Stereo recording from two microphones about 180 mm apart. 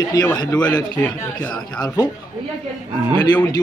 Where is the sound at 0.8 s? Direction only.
10° left (ahead or behind).